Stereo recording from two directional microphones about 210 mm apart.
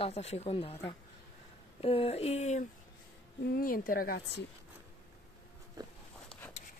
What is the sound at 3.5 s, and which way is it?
Speech, 45° left (ahead or behind).